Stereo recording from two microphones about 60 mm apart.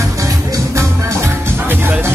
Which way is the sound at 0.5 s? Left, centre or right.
Right.